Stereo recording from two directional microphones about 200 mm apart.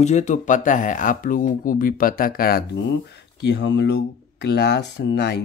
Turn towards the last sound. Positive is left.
turn(degrees=60)  # may be behind; listen again after turning